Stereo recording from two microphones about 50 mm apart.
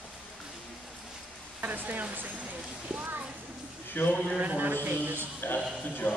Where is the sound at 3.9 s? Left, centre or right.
Left.